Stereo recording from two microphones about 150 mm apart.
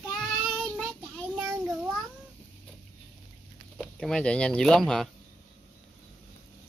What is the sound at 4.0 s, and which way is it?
Speech, 5° left (ahead or behind).